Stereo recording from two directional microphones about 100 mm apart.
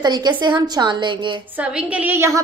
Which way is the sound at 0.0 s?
45° right (ahead or behind).